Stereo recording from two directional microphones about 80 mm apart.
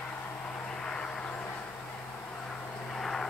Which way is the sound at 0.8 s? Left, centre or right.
Centre.